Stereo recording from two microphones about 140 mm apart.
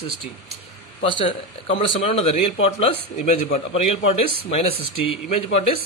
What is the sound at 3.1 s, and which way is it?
Speech, 65° left (ahead or behind).